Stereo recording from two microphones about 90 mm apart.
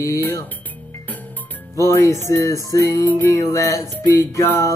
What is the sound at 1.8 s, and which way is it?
Music, 35° left (ahead or behind).